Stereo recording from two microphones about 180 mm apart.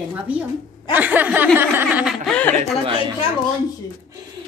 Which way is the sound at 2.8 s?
25° right (ahead or behind).